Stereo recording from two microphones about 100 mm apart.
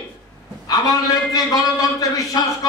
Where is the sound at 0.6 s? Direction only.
40° left (ahead or behind).